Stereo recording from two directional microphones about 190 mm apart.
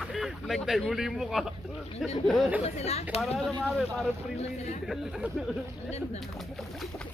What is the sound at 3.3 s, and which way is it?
Speech, centre (ahead or behind).